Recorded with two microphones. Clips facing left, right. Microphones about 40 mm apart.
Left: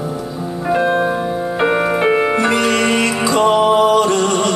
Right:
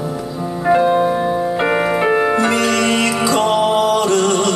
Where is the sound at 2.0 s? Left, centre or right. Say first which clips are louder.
Even; left.